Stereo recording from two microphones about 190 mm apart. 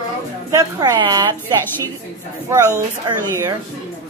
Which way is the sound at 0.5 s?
20° right (ahead or behind).